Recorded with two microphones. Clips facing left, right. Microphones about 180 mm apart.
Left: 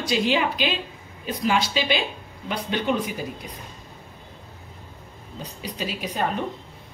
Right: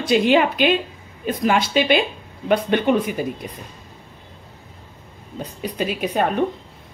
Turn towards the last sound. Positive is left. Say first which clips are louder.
# right 7 dB
turn(degrees=-55)  # may be behind; listen again after turning